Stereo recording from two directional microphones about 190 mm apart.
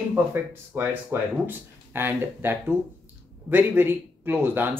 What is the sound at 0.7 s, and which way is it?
Speech, 10° right (ahead or behind).